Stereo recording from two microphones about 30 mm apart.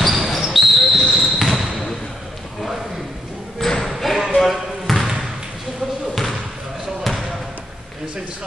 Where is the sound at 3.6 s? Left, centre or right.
Centre.